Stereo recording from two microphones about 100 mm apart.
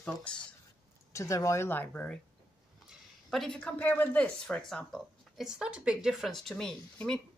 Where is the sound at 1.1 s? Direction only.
30° left (ahead or behind); by 2.2 s 15° left (ahead or behind).